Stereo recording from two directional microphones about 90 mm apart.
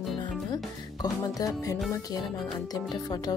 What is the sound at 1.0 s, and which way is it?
Speech, 40° left (ahead or behind).